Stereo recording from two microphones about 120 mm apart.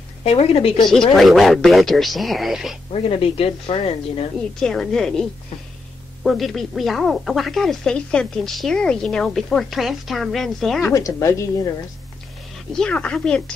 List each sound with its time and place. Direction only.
0.2 s a woman's voice: 55° left (ahead or behind)
1.1 s speech: centre (ahead or behind)
2.9 s speech: 50° left (ahead or behind)
4.6 s speech: 5° left (ahead or behind)
6.2 s speech: centre (ahead or behind)
10.9 s a woman's voice: 25° left (ahead or behind)
12.7 s speech: 10° left (ahead or behind)